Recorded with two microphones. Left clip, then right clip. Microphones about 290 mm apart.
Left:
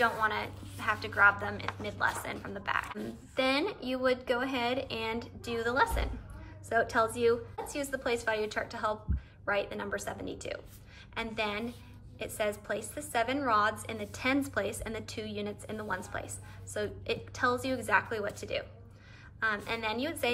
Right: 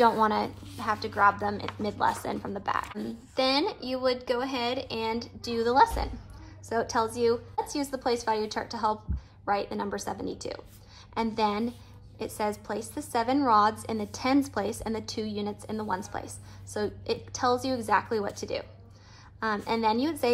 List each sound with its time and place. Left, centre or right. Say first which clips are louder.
0.0 s a woman's voice: right 6 dB; centre